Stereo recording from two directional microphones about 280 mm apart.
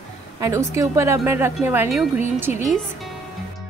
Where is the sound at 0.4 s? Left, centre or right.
Centre.